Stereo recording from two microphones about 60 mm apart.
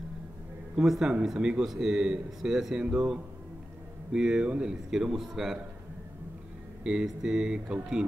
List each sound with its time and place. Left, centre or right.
0.7 s a man's voice: centre
4.1 s a man's voice: centre
6.8 s a man's voice: centre